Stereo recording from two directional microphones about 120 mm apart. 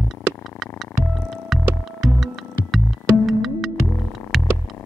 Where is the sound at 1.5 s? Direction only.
Centre (ahead or behind).